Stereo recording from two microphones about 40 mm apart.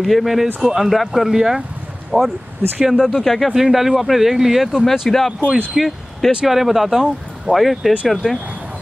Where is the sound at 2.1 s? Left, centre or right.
Right.